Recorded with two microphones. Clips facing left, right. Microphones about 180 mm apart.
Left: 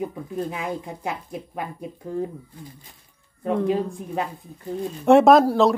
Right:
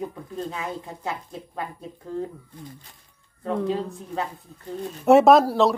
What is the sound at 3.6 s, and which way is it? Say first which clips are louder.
Speech: left 3 dB; 15° left (ahead or behind).